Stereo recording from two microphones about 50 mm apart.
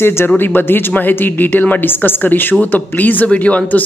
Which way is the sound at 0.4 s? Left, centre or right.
Left.